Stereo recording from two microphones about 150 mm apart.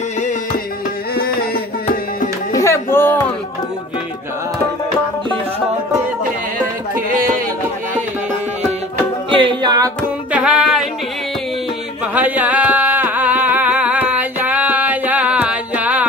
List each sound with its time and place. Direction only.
1.1 s music: 90° left
2.5 s music: 20° left (ahead or behind)
9.3 s music: 35° right (ahead or behind)
10.3 s music: 5° right (ahead or behind)
12.1 s music: 10° right (ahead or behind)